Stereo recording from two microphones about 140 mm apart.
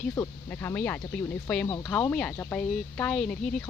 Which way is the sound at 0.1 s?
20° left (ahead or behind).